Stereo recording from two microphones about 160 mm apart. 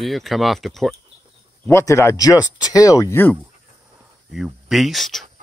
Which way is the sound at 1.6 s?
15° left (ahead or behind).